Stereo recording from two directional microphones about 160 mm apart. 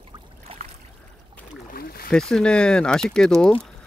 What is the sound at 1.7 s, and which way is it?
Speech, 65° left (ahead or behind).